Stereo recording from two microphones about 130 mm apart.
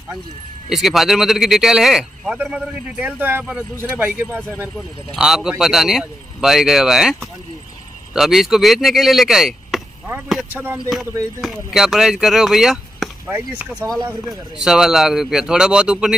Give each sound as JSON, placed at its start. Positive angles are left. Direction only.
{"t": 0.7, "sound": "a man's voice", "side_deg": 0}
{"t": 5.1, "sound": "a man's voice", "side_deg": -5}
{"t": 11.4, "sound": "a man's voice", "side_deg": 0}